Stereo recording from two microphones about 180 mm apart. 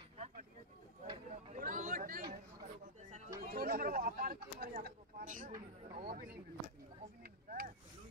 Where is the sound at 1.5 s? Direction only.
45° right (ahead or behind).